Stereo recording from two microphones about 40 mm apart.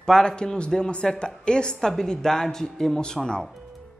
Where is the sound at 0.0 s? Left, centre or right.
Centre.